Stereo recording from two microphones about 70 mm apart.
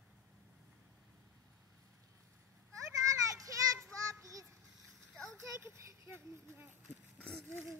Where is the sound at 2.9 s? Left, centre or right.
Right.